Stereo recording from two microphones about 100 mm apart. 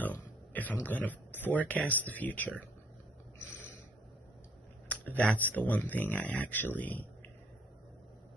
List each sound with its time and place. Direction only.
0.0 s a sound: 15° left (ahead or behind)
0.8 s speech: 15° left (ahead or behind)
4.8 s speech: 15° left (ahead or behind)